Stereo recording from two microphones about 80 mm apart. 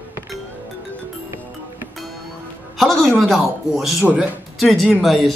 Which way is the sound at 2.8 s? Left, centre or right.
Centre.